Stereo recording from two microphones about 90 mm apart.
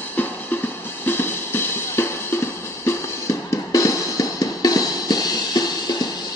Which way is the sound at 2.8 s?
35° left (ahead or behind).